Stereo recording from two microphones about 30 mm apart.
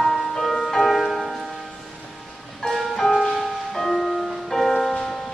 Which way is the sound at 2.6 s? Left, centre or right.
Centre.